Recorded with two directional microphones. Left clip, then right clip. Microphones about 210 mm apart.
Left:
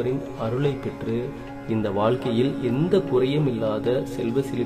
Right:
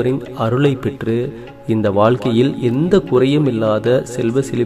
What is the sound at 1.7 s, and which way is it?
Speech, 25° right (ahead or behind).